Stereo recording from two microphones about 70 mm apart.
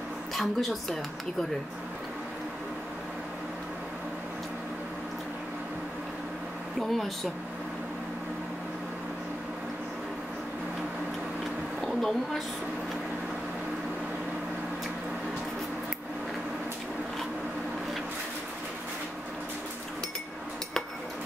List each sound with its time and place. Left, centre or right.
0.3 s speech: centre
6.8 s speech: centre
11.8 s a woman's voice: centre